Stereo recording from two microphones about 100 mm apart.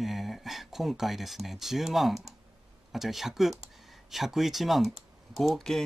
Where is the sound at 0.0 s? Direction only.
Centre (ahead or behind).